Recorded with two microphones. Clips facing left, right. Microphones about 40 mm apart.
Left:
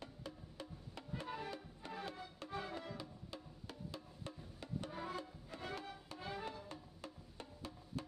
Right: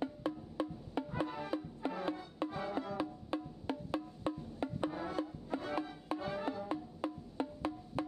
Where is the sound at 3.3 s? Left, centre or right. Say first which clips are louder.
Right 13 dB; right.